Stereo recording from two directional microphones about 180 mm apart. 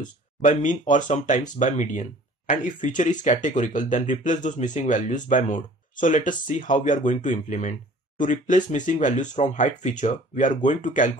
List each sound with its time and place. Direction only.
0.0 s speech: 45° left (ahead or behind)